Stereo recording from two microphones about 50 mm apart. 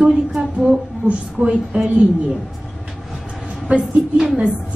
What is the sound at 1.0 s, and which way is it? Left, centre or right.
A woman's voice, right.